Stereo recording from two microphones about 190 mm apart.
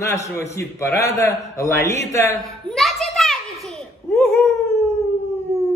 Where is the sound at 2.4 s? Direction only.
Centre (ahead or behind).